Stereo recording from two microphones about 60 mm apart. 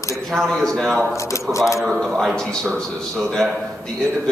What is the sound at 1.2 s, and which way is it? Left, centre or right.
Speech, left.